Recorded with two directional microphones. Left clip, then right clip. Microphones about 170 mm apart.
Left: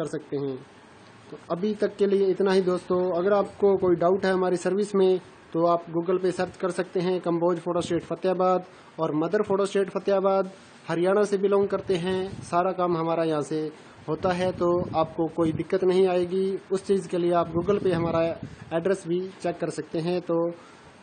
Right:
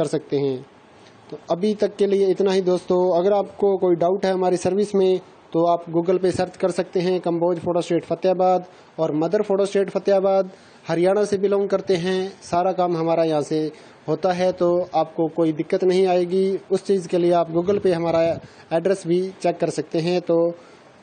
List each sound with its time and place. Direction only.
0.0 s speech: 30° right (ahead or behind)
3.6 s a man's voice: 15° right (ahead or behind)
6.1 s a man's voice: 25° right (ahead or behind)